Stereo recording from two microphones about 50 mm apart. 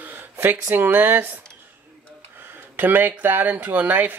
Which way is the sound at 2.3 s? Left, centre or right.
Right.